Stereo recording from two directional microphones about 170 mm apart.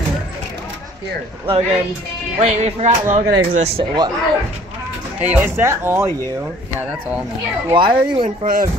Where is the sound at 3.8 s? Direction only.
30° right (ahead or behind).